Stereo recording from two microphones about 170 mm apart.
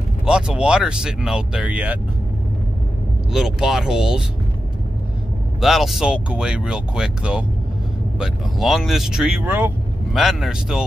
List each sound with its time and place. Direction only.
0.2 s speech: 5° right (ahead or behind)
3.3 s speech: centre (ahead or behind)
5.6 s speech: centre (ahead or behind)